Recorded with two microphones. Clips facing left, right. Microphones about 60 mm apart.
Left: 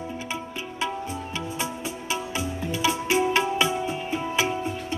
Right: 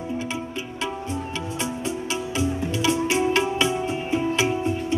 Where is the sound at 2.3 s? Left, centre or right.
Centre.